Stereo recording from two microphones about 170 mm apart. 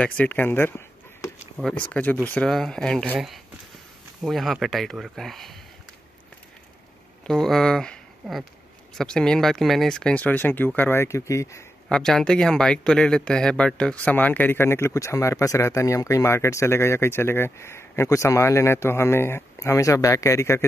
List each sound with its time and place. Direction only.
0.0 s speech: 10° left (ahead or behind)
7.2 s speech: centre (ahead or behind); by 11.6 s 15° left (ahead or behind)
11.9 s speech: 5° left (ahead or behind)